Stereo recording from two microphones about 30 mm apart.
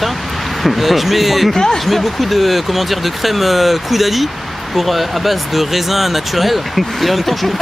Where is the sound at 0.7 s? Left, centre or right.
Centre.